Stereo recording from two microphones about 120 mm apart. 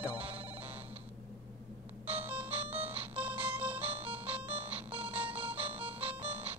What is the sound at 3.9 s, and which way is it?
Music, 55° right (ahead or behind).